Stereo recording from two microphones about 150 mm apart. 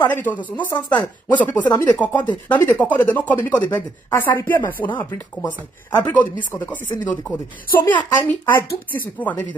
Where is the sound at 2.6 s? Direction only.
10° left (ahead or behind).